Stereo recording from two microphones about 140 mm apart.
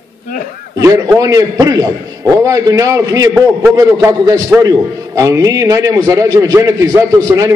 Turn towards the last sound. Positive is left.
turn(degrees=-25)  # may be behind; listen again after turning